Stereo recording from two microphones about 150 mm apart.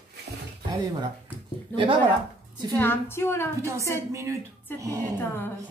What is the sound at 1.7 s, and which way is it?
Speech, 35° right (ahead or behind).